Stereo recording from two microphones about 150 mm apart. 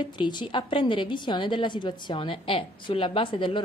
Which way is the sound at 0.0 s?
30° left (ahead or behind).